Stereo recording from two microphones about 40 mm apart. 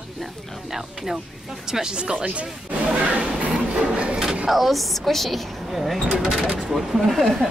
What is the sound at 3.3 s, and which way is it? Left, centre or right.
Printer, right.